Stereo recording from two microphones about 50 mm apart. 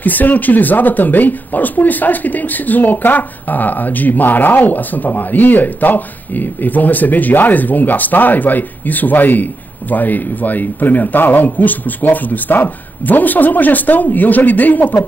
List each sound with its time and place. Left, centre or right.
0.0 s speech: left